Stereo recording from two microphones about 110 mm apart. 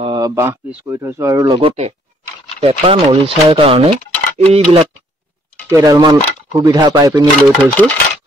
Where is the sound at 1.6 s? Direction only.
70° right (ahead or behind).